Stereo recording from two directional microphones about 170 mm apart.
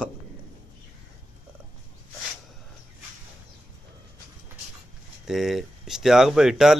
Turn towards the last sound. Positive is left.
turn(degrees=0)  # may be behind; listen again after turning